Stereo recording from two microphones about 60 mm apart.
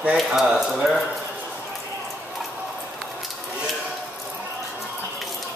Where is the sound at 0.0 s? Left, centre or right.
Centre.